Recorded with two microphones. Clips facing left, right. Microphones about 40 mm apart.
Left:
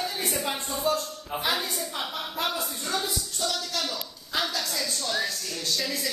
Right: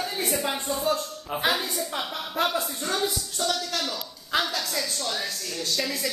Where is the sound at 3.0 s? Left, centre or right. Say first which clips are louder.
Right 3 dB; right.